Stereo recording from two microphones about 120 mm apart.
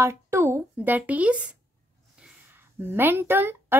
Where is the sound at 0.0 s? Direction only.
25° right (ahead or behind).